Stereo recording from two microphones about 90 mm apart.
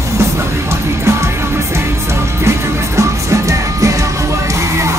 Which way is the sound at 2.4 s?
35° right (ahead or behind).